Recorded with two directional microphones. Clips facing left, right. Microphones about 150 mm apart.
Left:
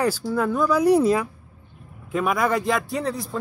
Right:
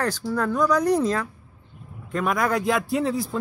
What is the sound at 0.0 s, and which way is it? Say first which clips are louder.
A man's voice: left 2 dB; 5° left (ahead or behind).